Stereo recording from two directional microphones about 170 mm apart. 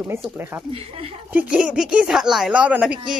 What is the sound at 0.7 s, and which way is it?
Speech, 35° right (ahead or behind).